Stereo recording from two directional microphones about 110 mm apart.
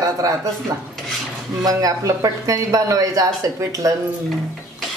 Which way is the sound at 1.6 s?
30° right (ahead or behind).